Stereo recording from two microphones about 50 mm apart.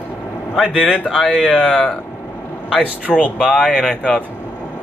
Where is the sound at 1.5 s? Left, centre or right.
Centre.